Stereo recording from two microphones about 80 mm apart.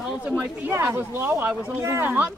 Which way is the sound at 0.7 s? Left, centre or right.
Right.